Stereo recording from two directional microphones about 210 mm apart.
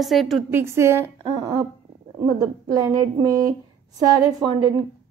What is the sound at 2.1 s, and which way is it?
A woman's voice, 20° right (ahead or behind).